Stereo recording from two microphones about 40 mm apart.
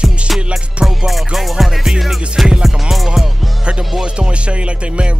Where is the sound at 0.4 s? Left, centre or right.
Right.